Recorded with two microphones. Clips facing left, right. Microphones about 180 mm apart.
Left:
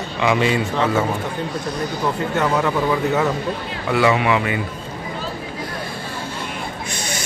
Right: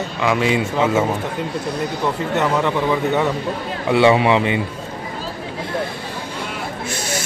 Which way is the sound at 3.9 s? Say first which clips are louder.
Right 3 dB; 25° right (ahead or behind).